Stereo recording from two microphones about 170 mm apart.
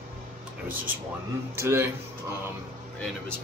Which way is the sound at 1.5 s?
15° right (ahead or behind).